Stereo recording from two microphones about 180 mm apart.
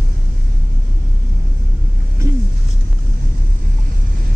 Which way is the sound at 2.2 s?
15° right (ahead or behind).